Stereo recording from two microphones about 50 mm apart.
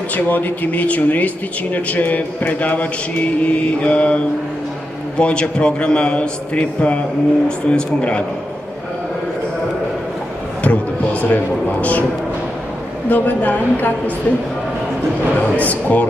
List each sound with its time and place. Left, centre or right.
0.1 s a man's voice: left
10.6 s speech: left
13.1 s speech: left
15.5 s speech: left